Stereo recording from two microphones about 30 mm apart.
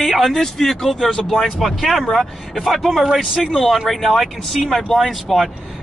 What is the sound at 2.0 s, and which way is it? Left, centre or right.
Speech, centre.